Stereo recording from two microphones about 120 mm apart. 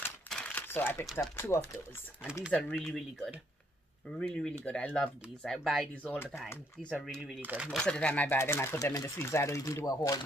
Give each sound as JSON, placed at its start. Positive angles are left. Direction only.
{"t": 0.3, "sound": "crumpling", "side_deg": 10}
{"t": 1.3, "sound": "speech", "side_deg": 20}
{"t": 2.5, "sound": "speech", "side_deg": 5}
{"t": 6.1, "sound": "speech", "side_deg": 20}
{"t": 6.8, "sound": "speech", "side_deg": 5}
{"t": 7.4, "sound": "speech", "side_deg": -10}
{"t": 7.7, "sound": "speech", "side_deg": 5}